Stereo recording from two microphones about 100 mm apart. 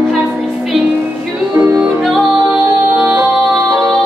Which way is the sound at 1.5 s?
20° right (ahead or behind).